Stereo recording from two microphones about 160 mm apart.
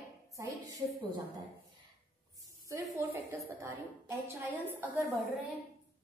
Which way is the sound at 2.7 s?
15° right (ahead or behind).